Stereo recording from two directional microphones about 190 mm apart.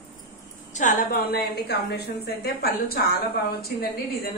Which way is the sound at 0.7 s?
45° left (ahead or behind).